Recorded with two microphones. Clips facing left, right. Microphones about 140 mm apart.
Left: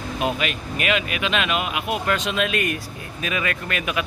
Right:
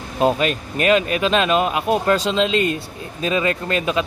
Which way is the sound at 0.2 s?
35° right (ahead or behind).